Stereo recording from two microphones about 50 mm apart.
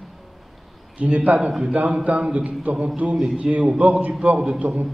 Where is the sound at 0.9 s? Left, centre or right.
Right.